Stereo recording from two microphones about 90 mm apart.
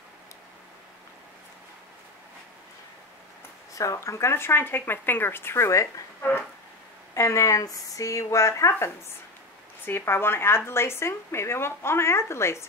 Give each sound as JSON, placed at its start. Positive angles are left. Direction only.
{"t": 3.7, "sound": "speech", "side_deg": 35}